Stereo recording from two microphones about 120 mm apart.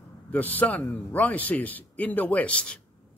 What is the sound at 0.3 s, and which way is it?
Speech, 15° left (ahead or behind).